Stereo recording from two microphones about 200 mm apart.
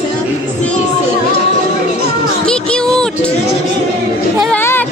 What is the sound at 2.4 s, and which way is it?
Speech, 5° left (ahead or behind).